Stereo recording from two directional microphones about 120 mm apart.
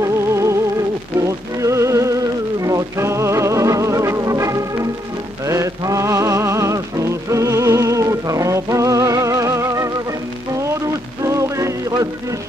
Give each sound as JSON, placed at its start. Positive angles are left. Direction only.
{"t": 0.0, "sound": "music", "side_deg": -25}